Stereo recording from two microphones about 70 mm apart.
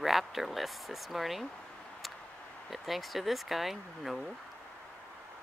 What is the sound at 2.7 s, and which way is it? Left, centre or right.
Speech, centre.